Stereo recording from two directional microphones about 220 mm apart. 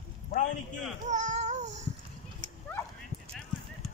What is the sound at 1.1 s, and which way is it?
Babbling, 35° right (ahead or behind).